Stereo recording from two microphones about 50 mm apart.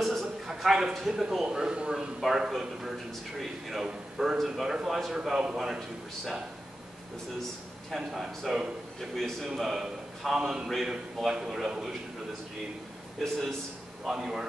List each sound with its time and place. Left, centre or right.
0.0 s a sound: centre
0.5 s a man's voice: centre
1.2 s a man's voice: centre
7.9 s a man's voice: centre
13.2 s a man's voice: centre
14.0 s a man's voice: centre